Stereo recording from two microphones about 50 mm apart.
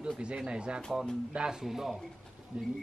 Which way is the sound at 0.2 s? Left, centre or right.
Centre.